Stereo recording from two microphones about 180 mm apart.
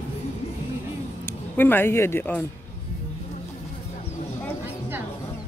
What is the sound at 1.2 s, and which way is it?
Speech, 10° left (ahead or behind).